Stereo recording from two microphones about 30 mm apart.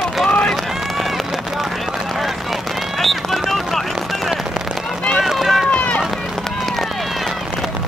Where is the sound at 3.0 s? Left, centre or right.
Centre.